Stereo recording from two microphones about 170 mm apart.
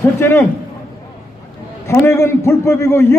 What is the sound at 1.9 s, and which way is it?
A man's voice, 15° left (ahead or behind).